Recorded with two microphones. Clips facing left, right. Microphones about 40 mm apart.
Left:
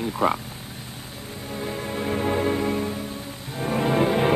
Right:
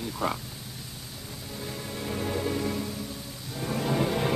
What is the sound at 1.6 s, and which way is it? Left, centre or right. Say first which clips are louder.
Music: left 7 dB; left.